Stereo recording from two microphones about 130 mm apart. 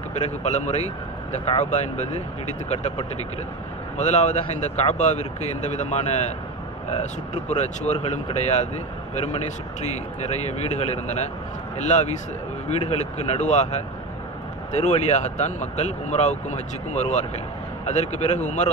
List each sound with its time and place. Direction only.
0.1 s speech: 60° left (ahead or behind)